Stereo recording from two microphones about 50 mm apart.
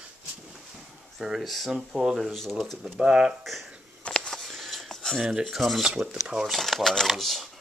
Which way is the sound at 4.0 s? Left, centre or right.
Left.